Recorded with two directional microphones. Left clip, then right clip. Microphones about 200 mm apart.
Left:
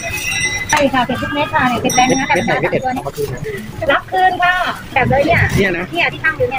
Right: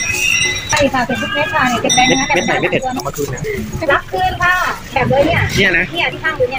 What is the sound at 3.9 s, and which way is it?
Speech, 35° right (ahead or behind).